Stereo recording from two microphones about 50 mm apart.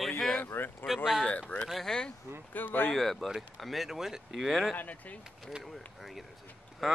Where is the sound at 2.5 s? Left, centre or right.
Left.